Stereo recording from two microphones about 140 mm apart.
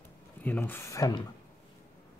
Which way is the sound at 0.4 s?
15° left (ahead or behind).